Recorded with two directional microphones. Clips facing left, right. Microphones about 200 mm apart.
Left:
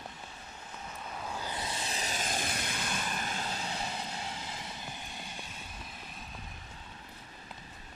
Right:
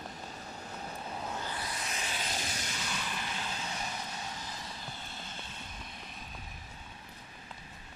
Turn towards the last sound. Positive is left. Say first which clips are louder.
# even
turn(degrees=5)  # may be behind; listen again after turning